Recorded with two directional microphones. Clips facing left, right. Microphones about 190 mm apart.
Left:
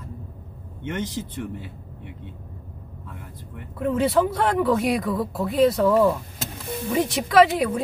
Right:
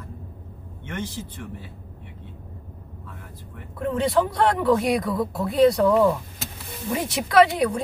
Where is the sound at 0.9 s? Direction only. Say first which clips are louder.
Left 3 dB; 20° left (ahead or behind).